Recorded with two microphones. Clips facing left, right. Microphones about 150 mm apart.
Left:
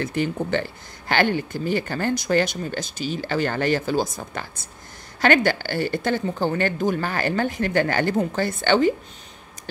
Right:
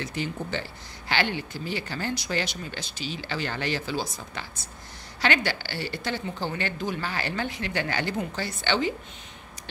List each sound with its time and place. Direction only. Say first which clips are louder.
0.0 s speech: left 7 dB; 55° left (ahead or behind)